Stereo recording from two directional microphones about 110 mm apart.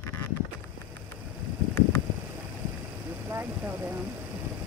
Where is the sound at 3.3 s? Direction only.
20° right (ahead or behind).